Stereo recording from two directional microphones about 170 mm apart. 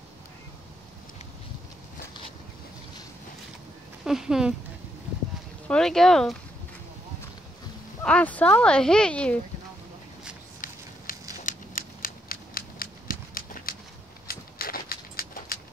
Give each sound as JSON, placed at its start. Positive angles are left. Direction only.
{"t": 4.0, "sound": "speech", "side_deg": -5}
{"t": 5.7, "sound": "speech", "side_deg": 5}
{"t": 8.0, "sound": "speech", "side_deg": 5}
{"t": 11.1, "sound": "a sound", "side_deg": 55}